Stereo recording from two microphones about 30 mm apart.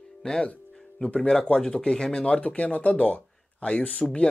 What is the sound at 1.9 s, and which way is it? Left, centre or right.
Speech, left.